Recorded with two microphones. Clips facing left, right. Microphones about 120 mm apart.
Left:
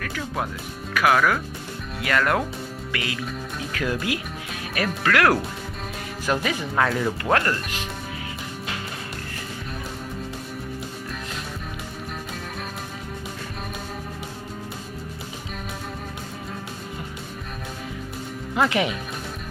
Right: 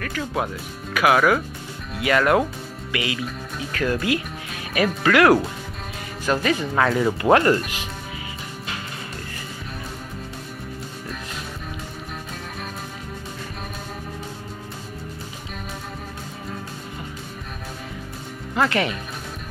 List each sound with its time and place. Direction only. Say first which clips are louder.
0.0 s speech: right 3 dB; 5° right (ahead or behind)
6.2 s speech: right 3 dB; 5° left (ahead or behind)
7.2 s speech: right 8 dB; 20° right (ahead or behind)
18.5 s speech: even; 5° left (ahead or behind)